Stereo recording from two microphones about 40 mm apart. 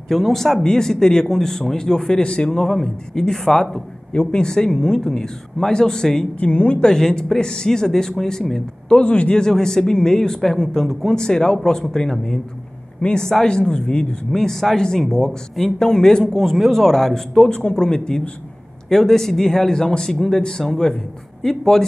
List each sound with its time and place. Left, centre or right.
0.1 s speech: centre
6.4 s speech: left
6.8 s speech: centre
9.0 s speech: left
9.4 s speech: centre
14.3 s speech: centre
16.3 s speech: centre
17.5 s a man's voice: left